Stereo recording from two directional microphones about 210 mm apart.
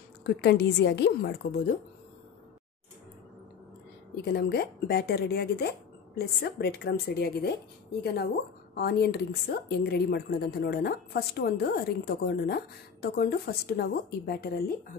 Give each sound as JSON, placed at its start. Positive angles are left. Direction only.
{"t": 0.2, "sound": "a woman's voice", "side_deg": 50}
{"t": 4.1, "sound": "a woman's voice", "side_deg": 50}